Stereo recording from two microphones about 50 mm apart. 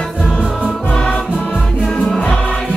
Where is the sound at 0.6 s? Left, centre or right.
Centre.